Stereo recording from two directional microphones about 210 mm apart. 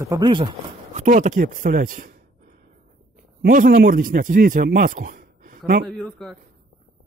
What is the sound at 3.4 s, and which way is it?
A man's voice, 45° right (ahead or behind).